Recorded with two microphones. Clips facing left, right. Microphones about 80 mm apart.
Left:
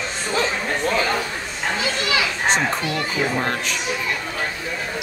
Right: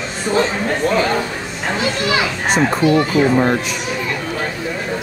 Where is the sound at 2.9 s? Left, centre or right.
Centre.